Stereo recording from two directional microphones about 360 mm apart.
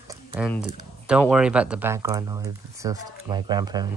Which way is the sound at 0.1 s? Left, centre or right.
Centre.